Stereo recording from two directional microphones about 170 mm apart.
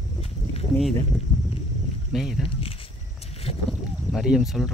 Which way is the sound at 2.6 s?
35° left (ahead or behind).